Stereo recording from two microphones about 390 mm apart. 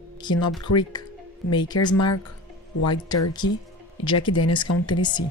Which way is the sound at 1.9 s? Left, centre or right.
Left.